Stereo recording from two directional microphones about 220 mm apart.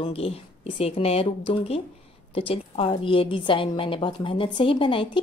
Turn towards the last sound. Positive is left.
turn(degrees=25)  # may be behind; listen again after turning